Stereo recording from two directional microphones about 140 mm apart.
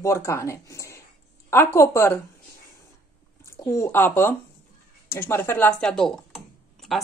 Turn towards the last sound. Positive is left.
turn(degrees=0)  # may be behind; listen again after turning